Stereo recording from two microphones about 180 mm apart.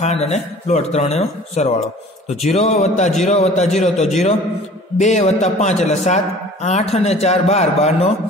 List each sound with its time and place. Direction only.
0.0 s a man's voice: 40° left (ahead or behind)